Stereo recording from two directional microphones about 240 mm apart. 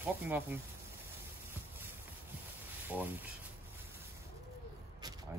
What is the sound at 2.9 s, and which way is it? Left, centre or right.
Speech, centre.